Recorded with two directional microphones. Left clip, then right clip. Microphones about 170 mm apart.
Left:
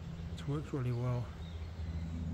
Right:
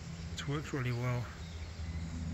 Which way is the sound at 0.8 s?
5° left (ahead or behind).